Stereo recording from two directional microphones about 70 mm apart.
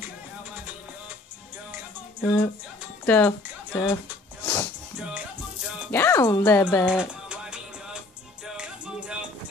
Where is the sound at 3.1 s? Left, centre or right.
Left.